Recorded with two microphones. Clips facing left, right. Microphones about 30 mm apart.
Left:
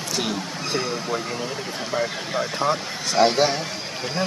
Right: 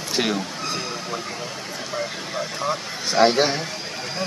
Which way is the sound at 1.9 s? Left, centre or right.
Centre.